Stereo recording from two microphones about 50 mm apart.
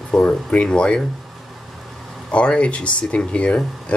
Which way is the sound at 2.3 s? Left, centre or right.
Left.